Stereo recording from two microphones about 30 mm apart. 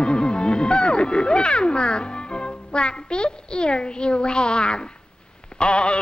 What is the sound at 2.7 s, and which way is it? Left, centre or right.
A child's voice, left.